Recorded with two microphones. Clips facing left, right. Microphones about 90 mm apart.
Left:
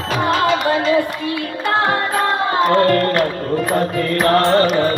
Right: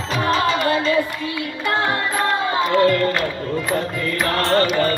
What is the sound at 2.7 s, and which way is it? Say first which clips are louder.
Music: left 1 dB; 50° left (ahead or behind).